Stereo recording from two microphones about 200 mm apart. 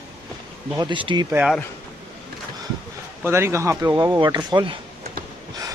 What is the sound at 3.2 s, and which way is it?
Speech, 10° right (ahead or behind).